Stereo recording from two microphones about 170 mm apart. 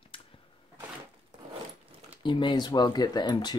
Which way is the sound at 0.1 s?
30° left (ahead or behind).